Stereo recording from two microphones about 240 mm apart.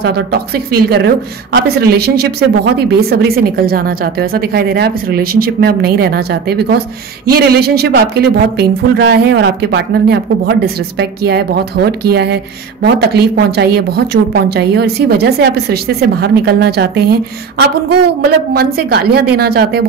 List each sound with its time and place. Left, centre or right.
0.0 s a woman's voice: right
18.5 s a woman's voice: right